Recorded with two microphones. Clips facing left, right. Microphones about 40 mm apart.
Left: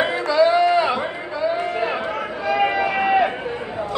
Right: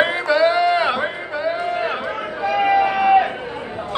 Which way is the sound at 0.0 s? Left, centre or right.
Right.